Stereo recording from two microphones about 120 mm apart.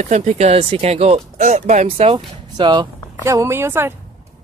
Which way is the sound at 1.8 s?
55° right (ahead or behind).